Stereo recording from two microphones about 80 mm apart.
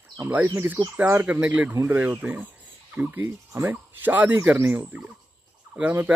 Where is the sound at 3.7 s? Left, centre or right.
Right.